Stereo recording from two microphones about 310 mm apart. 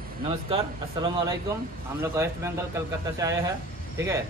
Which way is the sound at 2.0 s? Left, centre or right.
Centre.